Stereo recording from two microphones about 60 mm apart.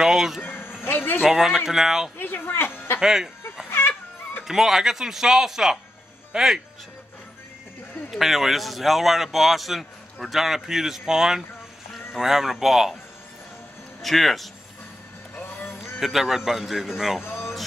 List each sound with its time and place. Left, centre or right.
0.0 s a sound: centre
0.4 s speech: left
1.2 s speech: centre
2.1 s speech: left
3.0 s speech: centre
3.7 s music: left
4.5 s speech: centre
8.1 s speech: centre
14.0 s speech: centre
15.5 s a sound: left
15.8 s speech: centre